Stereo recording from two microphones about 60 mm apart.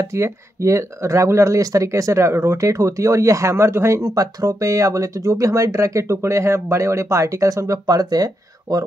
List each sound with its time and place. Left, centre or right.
0.0 s speech: right